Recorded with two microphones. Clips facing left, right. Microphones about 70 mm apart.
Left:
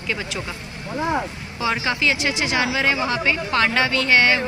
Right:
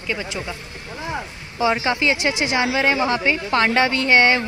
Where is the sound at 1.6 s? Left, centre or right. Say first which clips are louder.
Right 3 dB; right.